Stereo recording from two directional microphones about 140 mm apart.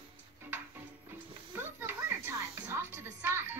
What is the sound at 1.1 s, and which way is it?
Music, 15° right (ahead or behind).